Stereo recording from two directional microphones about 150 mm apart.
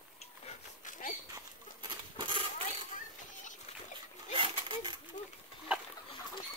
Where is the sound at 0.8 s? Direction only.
60° left (ahead or behind).